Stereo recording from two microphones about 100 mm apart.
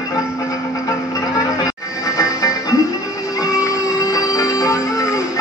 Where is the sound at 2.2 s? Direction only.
35° left (ahead or behind).